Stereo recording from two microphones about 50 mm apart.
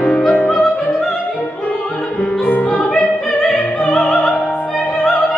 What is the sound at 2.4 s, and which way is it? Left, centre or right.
Music, left.